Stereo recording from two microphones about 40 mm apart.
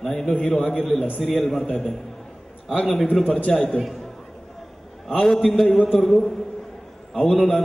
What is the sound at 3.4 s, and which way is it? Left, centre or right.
Speech, left.